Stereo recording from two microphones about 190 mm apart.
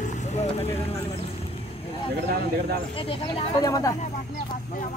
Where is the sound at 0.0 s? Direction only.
40° left (ahead or behind).